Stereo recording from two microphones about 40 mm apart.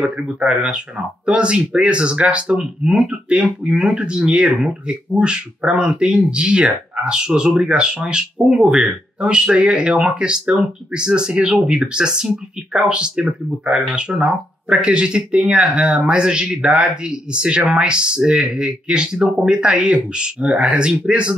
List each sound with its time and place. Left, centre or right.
0.1 s speech: right
2.5 s speech: centre
5.9 s speech: centre
6.1 s speech: right